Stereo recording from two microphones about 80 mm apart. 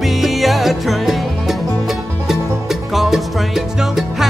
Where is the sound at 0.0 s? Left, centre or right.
Centre.